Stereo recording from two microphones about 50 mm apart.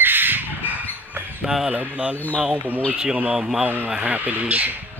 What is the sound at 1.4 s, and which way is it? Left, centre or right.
Speech, centre.